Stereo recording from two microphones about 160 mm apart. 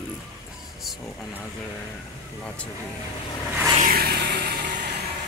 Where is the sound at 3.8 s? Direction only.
70° right (ahead or behind).